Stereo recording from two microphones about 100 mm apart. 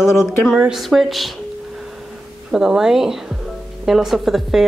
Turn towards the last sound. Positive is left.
turn(degrees=-5)  # may be behind; listen again after turning